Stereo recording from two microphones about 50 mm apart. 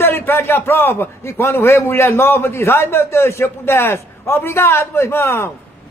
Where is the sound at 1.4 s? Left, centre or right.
Left.